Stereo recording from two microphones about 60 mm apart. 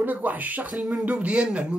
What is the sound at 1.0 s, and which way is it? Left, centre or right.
Speech, right.